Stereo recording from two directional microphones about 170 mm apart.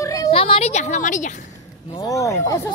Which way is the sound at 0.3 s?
35° left (ahead or behind).